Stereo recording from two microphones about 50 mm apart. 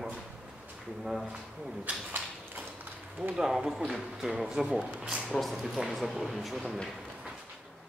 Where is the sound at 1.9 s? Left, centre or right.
Right.